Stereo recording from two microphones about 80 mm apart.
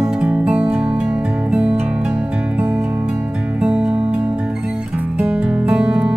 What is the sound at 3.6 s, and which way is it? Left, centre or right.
Music, centre.